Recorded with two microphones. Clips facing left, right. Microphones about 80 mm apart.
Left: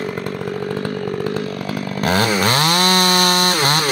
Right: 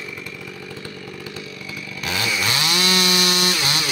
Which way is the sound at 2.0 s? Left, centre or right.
Left.